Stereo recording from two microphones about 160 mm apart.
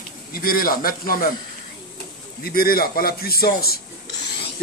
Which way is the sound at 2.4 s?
70° left (ahead or behind).